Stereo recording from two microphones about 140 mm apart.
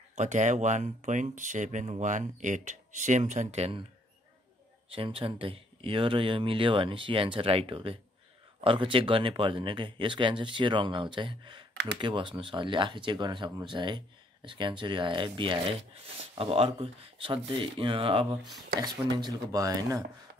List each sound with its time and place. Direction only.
0.1 s speech: 60° right (ahead or behind)
4.9 s speech: 40° right (ahead or behind); by 20.0 s 25° right (ahead or behind)